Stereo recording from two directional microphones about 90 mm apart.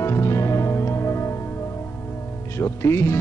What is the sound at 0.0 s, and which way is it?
Music, 35° left (ahead or behind).